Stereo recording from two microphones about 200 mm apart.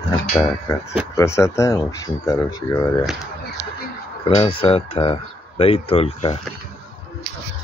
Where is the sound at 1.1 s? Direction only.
15° left (ahead or behind).